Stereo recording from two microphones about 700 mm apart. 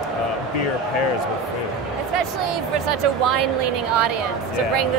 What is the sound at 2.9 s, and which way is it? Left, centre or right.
Speech, right.